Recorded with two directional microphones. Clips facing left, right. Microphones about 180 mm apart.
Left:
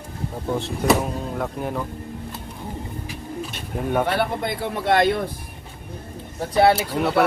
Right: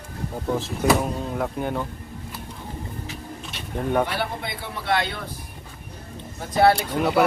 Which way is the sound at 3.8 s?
5° left (ahead or behind).